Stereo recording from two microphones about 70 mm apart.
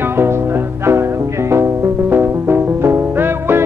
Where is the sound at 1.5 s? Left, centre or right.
Right.